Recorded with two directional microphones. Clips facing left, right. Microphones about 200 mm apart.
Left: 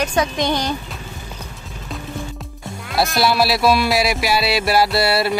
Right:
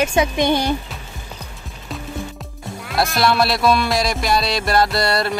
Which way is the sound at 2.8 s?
Centre (ahead or behind).